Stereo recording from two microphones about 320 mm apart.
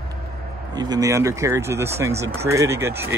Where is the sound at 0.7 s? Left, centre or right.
Centre.